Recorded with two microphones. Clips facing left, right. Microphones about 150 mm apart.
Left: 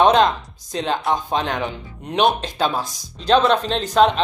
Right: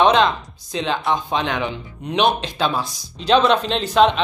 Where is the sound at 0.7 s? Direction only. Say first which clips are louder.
Even; 45° left (ahead or behind).